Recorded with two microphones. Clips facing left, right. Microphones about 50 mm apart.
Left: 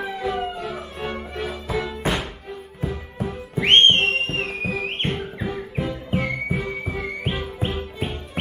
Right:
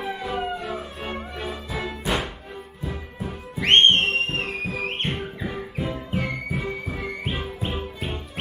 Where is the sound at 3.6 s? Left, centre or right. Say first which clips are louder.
Left 1 dB; left.